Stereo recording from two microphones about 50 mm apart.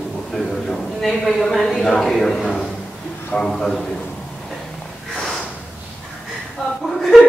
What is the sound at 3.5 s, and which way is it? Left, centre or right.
Speech, centre.